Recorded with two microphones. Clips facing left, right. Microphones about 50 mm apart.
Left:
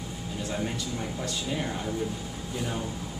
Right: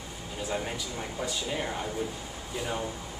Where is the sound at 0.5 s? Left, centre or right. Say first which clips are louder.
Left 1 dB; centre.